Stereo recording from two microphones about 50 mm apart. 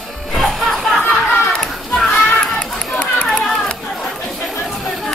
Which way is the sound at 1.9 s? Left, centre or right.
Centre.